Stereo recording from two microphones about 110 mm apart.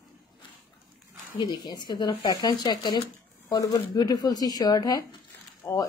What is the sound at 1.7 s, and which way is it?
Speech, 40° left (ahead or behind).